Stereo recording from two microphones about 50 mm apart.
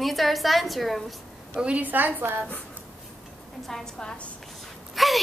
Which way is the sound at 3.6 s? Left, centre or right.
Centre.